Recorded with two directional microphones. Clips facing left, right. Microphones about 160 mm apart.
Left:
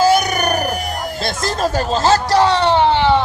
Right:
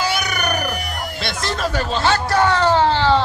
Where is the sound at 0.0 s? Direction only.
45° left (ahead or behind).